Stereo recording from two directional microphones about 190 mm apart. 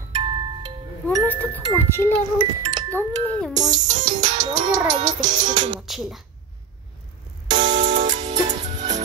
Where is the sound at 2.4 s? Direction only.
20° right (ahead or behind).